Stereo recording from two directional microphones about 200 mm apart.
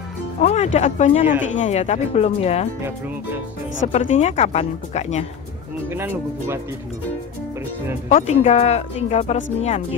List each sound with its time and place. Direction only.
0.4 s speech: 35° left (ahead or behind)
3.8 s speech: 35° left (ahead or behind)
5.9 s speech: 10° right (ahead or behind)
8.1 s speech: 35° left (ahead or behind)